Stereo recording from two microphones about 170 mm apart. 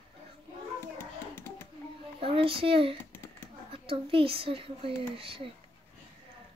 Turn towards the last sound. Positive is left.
turn(degrees=-30)  # may be behind; listen again after turning